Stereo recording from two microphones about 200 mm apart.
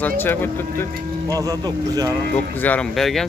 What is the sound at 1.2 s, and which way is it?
Speech, 15° right (ahead or behind).